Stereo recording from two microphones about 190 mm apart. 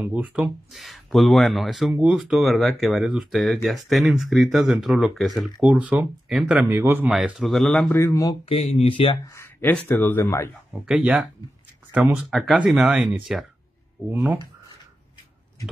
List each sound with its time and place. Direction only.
0.0 s speech: 5° right (ahead or behind)
7.9 s speech: 15° left (ahead or behind)
8.5 s speech: 30° left (ahead or behind)
9.3 s speech: 10° left (ahead or behind)
10.7 s speech: 5° right (ahead or behind)